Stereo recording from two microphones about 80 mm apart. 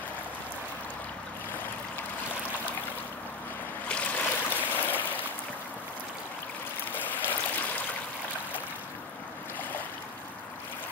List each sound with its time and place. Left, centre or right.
3.9 s stream: centre
7.0 s stream: left